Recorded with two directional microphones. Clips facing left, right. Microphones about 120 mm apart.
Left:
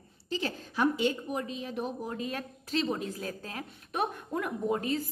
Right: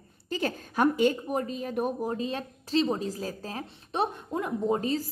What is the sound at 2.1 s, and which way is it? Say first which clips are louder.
A woman's voice: right 4 dB; 30° right (ahead or behind).